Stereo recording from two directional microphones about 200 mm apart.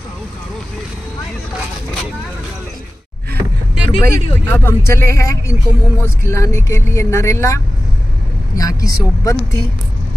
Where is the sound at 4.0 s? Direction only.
10° left (ahead or behind).